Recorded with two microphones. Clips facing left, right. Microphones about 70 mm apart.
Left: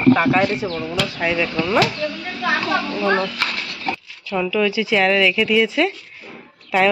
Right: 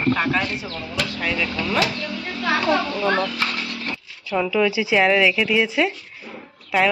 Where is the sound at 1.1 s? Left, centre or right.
Centre.